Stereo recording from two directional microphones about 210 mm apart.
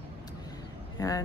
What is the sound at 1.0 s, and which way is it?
Speech, 15° left (ahead or behind).